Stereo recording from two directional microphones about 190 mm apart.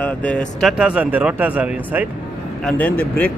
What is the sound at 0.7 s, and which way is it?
Speech, 5° right (ahead or behind).